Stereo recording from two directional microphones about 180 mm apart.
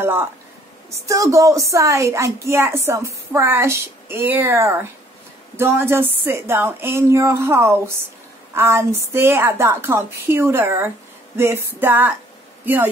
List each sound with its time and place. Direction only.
0.0 s a woman's voice: 15° right (ahead or behind)